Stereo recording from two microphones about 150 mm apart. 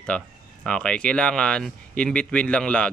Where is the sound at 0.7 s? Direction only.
5° left (ahead or behind).